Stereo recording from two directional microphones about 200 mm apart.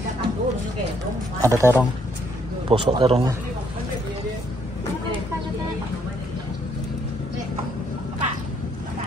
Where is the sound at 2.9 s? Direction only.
30° right (ahead or behind).